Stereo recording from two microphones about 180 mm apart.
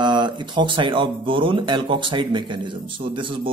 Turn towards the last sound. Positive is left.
turn(degrees=-25)  # may be behind; listen again after turning